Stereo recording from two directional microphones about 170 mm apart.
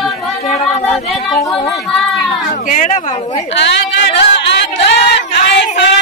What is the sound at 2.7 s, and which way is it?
Speech, 50° left (ahead or behind).